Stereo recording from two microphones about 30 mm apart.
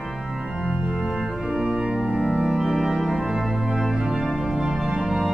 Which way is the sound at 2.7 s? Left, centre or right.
Centre.